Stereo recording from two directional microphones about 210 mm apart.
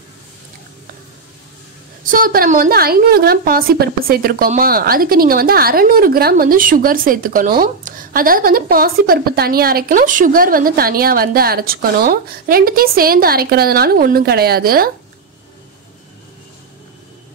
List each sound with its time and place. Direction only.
2.0 s a woman's voice: 40° right (ahead or behind)